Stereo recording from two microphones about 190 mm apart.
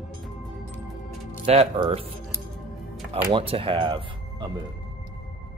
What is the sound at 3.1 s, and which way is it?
Speech, 30° right (ahead or behind).